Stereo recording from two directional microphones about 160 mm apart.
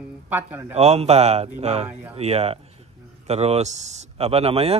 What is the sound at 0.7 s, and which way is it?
Speech, 40° right (ahead or behind).